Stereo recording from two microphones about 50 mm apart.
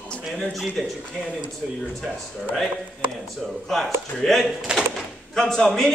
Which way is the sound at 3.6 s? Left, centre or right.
Centre.